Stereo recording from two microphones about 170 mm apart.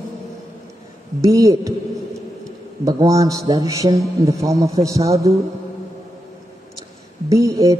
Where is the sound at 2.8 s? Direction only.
20° right (ahead or behind).